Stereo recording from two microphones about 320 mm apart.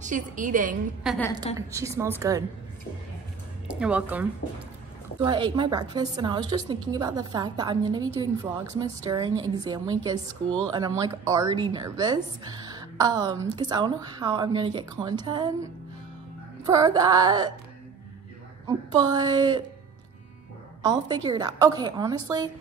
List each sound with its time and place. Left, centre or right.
0.0 s a woman's voice: right
1.0 s speech: centre
1.7 s a woman's voice: centre
3.6 s a woman's voice: centre
18.7 s a woman's voice: centre
20.8 s a woman's voice: centre